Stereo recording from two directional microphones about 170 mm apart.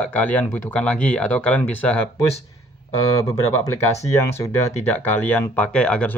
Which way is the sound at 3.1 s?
20° left (ahead or behind).